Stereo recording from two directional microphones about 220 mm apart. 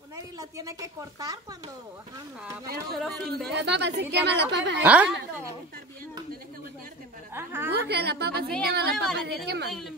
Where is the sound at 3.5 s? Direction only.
50° right (ahead or behind).